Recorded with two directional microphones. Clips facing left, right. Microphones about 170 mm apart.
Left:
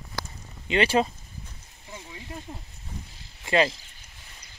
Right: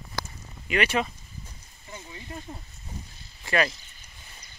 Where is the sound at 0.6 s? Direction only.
30° left (ahead or behind).